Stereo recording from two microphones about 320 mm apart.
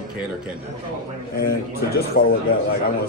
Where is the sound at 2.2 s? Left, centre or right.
Left.